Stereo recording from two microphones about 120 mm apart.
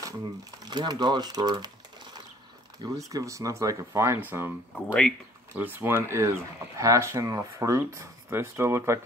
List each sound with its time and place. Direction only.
0.0 s speech: 35° right (ahead or behind)
2.8 s speech: 30° right (ahead or behind)